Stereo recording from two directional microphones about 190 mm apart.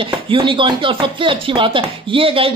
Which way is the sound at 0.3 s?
25° right (ahead or behind).